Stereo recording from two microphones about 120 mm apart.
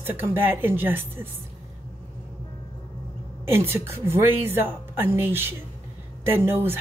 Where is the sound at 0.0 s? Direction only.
20° right (ahead or behind).